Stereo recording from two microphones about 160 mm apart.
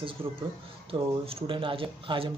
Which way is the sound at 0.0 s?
35° right (ahead or behind).